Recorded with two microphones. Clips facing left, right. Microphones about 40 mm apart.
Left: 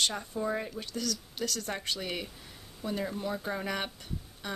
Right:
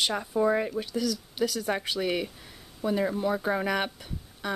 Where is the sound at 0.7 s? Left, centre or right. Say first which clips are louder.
Right 6 dB; centre.